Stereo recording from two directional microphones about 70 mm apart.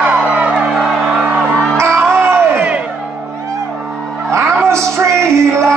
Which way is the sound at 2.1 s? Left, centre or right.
Right.